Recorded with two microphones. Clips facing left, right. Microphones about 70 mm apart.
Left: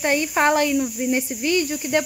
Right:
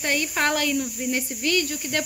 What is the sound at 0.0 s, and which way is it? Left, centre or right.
Speech, left.